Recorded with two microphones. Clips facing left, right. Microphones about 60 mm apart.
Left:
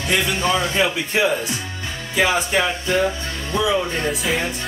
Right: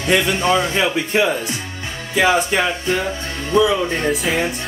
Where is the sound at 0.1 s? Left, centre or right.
Right.